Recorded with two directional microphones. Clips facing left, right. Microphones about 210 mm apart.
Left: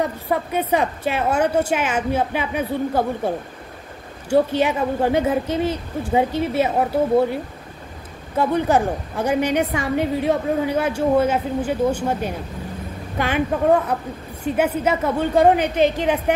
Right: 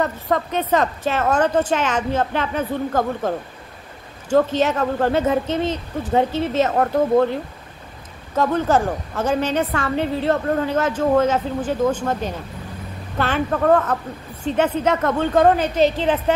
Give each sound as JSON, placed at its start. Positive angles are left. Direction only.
{"t": 0.0, "sound": "a woman's voice", "side_deg": 10}
{"t": 8.4, "sound": "a woman's voice", "side_deg": 15}